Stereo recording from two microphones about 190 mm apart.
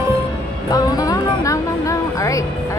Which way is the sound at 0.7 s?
20° left (ahead or behind).